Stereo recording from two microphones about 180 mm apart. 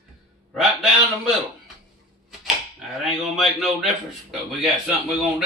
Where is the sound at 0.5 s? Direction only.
Centre (ahead or behind).